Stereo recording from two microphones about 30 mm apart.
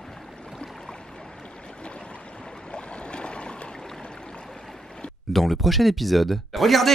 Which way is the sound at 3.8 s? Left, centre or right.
Centre.